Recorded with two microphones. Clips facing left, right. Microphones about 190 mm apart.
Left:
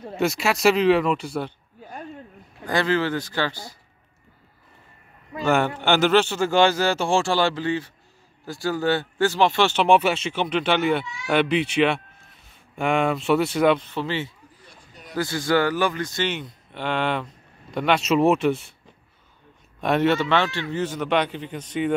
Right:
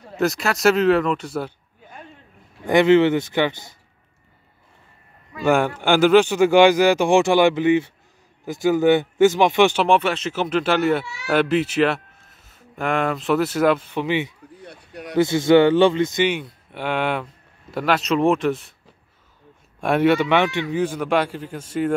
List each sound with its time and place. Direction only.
0.2 s speech: centre (ahead or behind)
2.6 s speech: 20° right (ahead or behind)
5.4 s a man's voice: 10° right (ahead or behind)
9.8 s speech: 5° left (ahead or behind); by 14.3 s 15° right (ahead or behind)
14.6 s a sound: 65° right (ahead or behind)
15.1 s a man's voice: 20° right (ahead or behind); by 18.8 s centre (ahead or behind)
19.8 s a man's voice: 10° right (ahead or behind)